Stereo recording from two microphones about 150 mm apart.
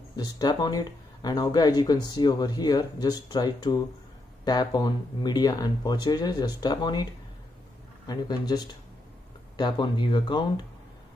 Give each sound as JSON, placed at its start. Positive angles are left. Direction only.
{"t": 0.1, "sound": "speech", "side_deg": 25}
{"t": 8.1, "sound": "speech", "side_deg": 25}